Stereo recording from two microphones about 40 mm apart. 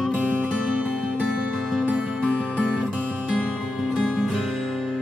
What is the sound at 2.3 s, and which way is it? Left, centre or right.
Music, left.